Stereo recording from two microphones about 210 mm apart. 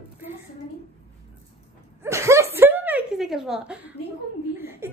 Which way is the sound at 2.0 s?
15° right (ahead or behind).